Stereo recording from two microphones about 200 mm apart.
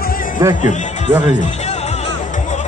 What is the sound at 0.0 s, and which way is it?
Music, 45° left (ahead or behind).